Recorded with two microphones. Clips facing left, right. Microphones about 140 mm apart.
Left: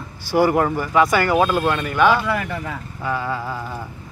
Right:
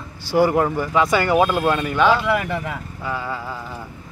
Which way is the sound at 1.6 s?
10° right (ahead or behind).